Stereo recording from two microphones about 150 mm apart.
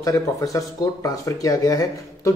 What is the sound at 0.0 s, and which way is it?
Speech, 20° left (ahead or behind).